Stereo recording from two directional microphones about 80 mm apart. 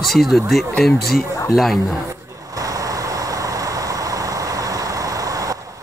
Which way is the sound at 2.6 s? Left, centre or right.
Right.